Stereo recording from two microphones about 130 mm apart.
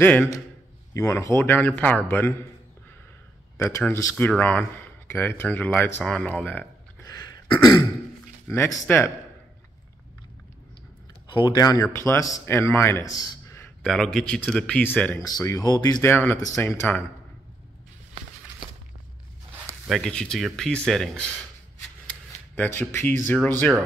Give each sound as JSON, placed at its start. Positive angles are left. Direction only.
{"t": 0.0, "sound": "speech", "side_deg": 10}
{"t": 0.9, "sound": "speech", "side_deg": 20}
{"t": 3.5, "sound": "speech", "side_deg": 25}
{"t": 7.0, "sound": "a sound", "side_deg": 30}
{"t": 8.5, "sound": "speech", "side_deg": 20}
{"t": 11.2, "sound": "speech", "side_deg": 35}
{"t": 13.0, "sound": "a sound", "side_deg": 25}
{"t": 13.8, "sound": "speech", "side_deg": 5}
{"t": 15.1, "sound": "speech", "side_deg": 25}
{"t": 16.0, "sound": "speech", "side_deg": 15}
{"t": 19.9, "sound": "speech", "side_deg": 5}
{"t": 22.6, "sound": "speech", "side_deg": 15}